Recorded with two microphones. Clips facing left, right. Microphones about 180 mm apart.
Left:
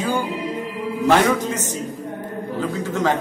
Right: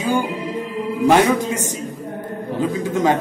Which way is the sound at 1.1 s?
15° right (ahead or behind).